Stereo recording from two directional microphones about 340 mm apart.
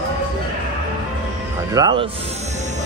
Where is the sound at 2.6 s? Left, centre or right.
Right.